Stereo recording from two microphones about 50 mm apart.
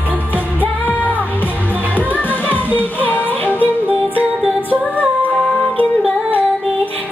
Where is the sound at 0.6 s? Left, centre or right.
Left.